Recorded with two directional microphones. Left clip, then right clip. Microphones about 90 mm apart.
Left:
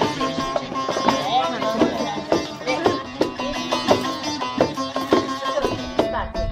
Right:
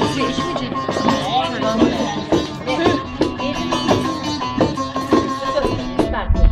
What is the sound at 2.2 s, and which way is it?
Music, 15° left (ahead or behind).